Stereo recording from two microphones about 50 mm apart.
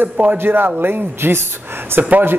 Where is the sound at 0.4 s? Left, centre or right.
Right.